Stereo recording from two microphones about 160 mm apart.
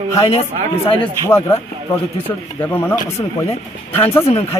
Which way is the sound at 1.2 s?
15° left (ahead or behind).